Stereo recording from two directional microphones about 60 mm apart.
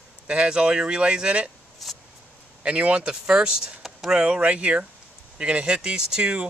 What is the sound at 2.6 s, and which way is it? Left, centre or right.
Speech, right.